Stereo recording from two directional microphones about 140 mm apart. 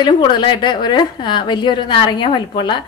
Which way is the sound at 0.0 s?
30° left (ahead or behind).